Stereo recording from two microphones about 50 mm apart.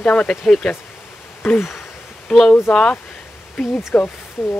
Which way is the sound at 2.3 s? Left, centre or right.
Centre.